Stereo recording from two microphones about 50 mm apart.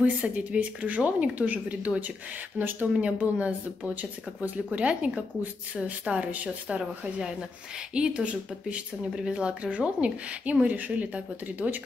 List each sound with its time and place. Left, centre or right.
0.0 s speech: right
6.8 s speech: centre